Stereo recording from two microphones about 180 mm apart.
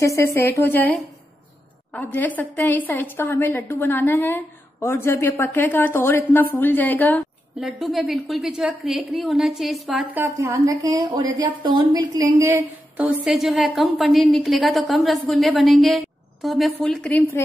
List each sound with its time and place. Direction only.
0.0 s a woman's voice: 15° left (ahead or behind)
2.0 s a woman's voice: 10° left (ahead or behind)
7.6 s a woman's voice: centre (ahead or behind)